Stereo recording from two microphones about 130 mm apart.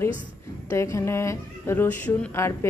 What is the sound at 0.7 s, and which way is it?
Speech, 20° left (ahead or behind).